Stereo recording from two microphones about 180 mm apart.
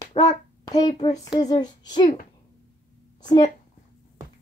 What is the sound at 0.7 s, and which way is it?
A child's voice, 20° left (ahead or behind).